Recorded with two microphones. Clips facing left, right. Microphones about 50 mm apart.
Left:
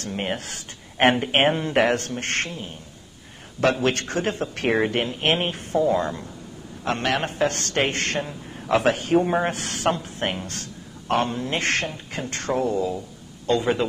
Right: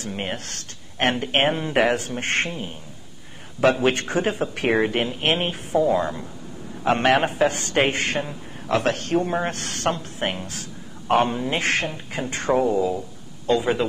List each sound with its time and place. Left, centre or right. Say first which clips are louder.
0.0 s speech: left 1 dB; centre
2.2 s a man's voice: right 3 dB; centre
6.8 s a man's voice: right 5 dB; centre